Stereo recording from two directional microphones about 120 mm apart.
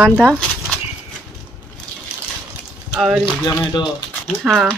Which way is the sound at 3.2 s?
35° left (ahead or behind).